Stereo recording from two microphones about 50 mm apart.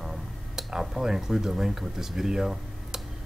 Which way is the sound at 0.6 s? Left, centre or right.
Centre.